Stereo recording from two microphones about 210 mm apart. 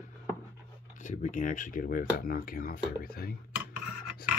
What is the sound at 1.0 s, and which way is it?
Speech, 35° left (ahead or behind).